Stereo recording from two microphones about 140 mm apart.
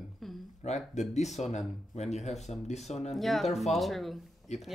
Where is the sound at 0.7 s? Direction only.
55° left (ahead or behind).